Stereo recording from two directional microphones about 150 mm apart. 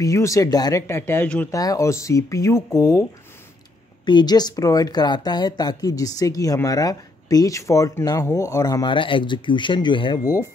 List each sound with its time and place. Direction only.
0.0 s speech: 20° left (ahead or behind)
1.5 s speech: 25° left (ahead or behind)
4.0 s speech: 30° left (ahead or behind)